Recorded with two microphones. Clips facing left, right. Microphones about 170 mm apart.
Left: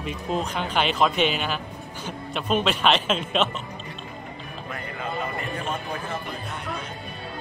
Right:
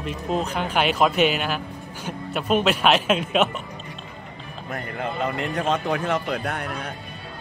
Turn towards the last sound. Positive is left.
turn(degrees=-65)  # may be behind; listen again after turning